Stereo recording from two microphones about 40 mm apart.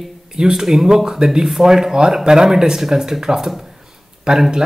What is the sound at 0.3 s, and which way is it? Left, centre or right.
Speech, centre.